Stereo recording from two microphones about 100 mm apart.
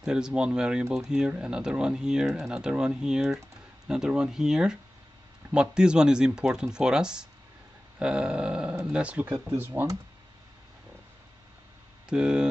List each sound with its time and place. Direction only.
0.0 s speech: 10° right (ahead or behind)
9.6 s speech: 25° right (ahead or behind)
12.1 s speech: 10° right (ahead or behind)